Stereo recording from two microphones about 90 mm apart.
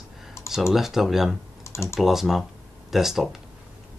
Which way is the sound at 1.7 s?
30° left (ahead or behind).